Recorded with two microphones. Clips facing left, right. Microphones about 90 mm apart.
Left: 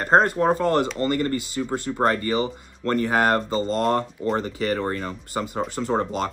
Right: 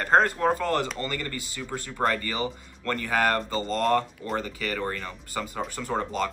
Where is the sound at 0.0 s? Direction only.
25° left (ahead or behind).